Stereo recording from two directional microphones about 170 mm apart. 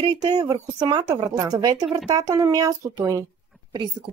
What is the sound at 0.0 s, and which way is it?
A woman's voice, 20° right (ahead or behind).